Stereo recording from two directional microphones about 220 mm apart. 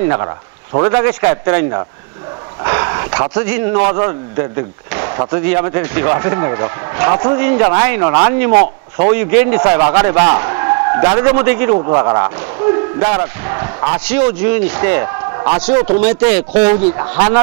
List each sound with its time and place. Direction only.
0.8 s a man's voice: 15° right (ahead or behind)
11.7 s a man's voice: 25° right (ahead or behind); by 17.2 s 10° right (ahead or behind)